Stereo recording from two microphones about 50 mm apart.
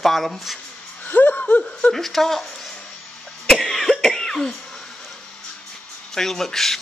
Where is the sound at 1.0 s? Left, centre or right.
Left.